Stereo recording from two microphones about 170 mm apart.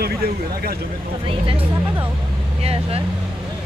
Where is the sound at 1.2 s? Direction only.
30° right (ahead or behind).